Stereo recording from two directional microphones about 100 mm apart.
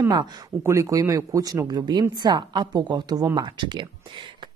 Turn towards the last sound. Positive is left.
turn(degrees=-50)  # may be behind; listen again after turning